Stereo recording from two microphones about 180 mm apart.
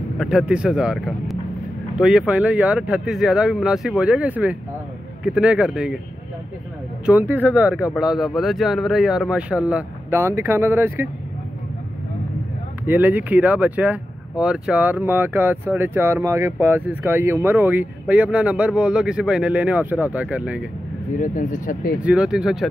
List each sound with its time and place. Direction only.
0.2 s speech: 5° right (ahead or behind)
7.1 s speech: 10° right (ahead or behind)
12.8 s speech: 10° right (ahead or behind)
21.2 s speech: 45° left (ahead or behind)
22.0 s speech: 5° right (ahead or behind)